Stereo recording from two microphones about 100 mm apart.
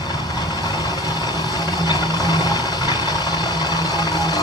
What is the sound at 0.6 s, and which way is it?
Vehicle, 40° left (ahead or behind).